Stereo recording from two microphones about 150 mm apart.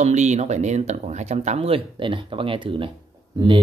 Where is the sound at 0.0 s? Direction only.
50° right (ahead or behind); by 3.6 s 35° right (ahead or behind).